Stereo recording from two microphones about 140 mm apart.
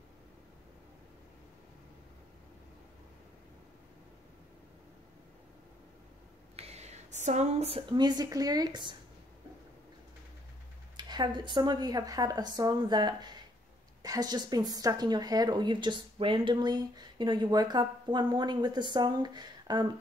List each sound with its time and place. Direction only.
6.5 s a sound: 50° right (ahead or behind)
7.9 s speech: 30° right (ahead or behind)
11.0 s speech: 30° right (ahead or behind)